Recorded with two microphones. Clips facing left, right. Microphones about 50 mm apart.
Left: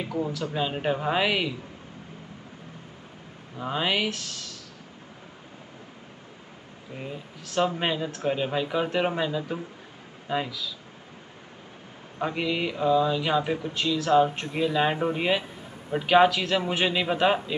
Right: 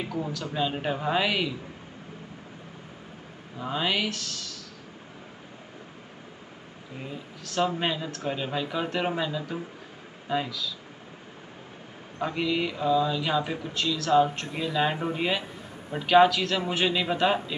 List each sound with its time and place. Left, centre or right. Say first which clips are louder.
0.1 s speech: left 3 dB; centre
3.5 s speech: left 1 dB; centre
7.0 s speech: left 1 dB; centre
12.2 s speech: even; centre